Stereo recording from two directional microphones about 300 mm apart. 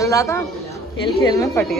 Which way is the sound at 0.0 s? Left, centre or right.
Centre.